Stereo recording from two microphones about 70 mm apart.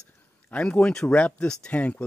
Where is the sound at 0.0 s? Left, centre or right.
Centre.